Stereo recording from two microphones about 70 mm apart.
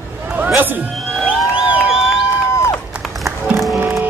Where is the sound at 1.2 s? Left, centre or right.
Centre.